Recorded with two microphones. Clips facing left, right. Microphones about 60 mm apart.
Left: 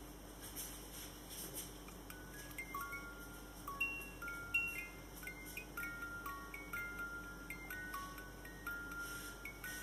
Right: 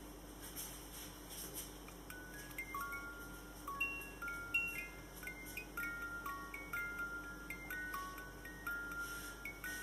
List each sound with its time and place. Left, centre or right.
5.8 s music: centre
8.6 s music: centre